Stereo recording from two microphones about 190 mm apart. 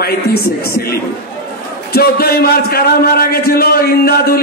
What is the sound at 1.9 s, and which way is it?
A man's voice, 55° left (ahead or behind).